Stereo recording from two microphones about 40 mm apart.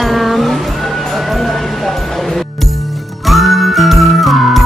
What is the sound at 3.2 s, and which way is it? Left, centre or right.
Music, centre.